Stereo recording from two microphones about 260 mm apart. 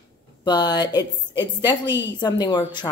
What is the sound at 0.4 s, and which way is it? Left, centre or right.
Speech, centre.